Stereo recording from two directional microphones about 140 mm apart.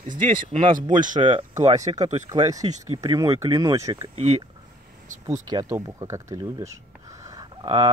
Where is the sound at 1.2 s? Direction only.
35° right (ahead or behind).